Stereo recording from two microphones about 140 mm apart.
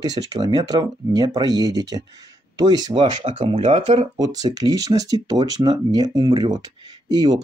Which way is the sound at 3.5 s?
55° right (ahead or behind).